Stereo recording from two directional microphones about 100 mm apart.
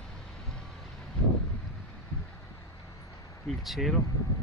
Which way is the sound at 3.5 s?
Centre (ahead or behind).